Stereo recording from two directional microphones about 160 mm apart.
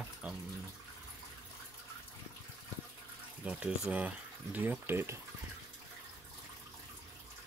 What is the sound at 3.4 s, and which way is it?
Speech, 5° right (ahead or behind).